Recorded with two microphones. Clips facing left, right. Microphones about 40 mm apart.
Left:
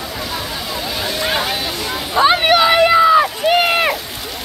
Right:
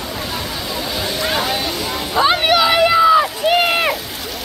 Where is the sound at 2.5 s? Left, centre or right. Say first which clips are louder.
Left 2 dB; left.